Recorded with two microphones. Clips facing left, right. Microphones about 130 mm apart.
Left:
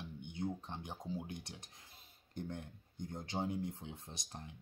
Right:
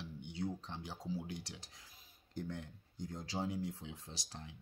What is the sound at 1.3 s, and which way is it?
Speech, 55° left (ahead or behind).